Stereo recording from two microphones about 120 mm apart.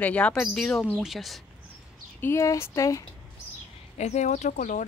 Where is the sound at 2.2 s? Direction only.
25° left (ahead or behind).